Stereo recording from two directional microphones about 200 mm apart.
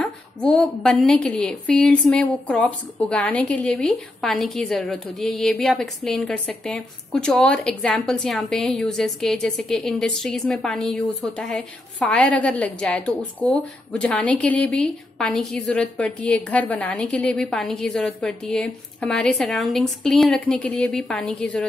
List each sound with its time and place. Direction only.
0.0 s a woman's voice: 5° left (ahead or behind)